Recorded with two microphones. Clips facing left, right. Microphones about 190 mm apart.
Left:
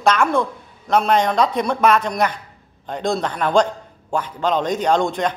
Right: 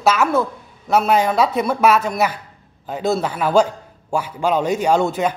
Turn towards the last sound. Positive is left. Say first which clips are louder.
# right 1 dB
turn(degrees=-5)  # may be behind; listen again after turning